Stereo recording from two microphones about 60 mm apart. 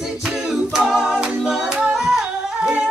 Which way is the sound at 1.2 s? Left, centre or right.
Centre.